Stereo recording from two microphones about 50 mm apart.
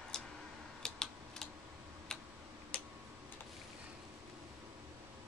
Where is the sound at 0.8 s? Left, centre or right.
Centre.